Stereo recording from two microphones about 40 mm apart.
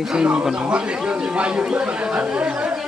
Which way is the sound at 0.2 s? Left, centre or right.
Right.